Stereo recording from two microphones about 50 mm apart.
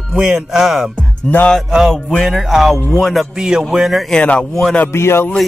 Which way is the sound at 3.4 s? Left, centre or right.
Centre.